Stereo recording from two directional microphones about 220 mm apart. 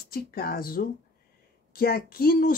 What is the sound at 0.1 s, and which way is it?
Speech, 45° left (ahead or behind).